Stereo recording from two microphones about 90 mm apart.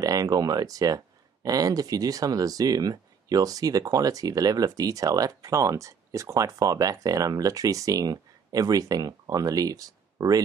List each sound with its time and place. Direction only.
0.0 s speech: 45° right (ahead or behind)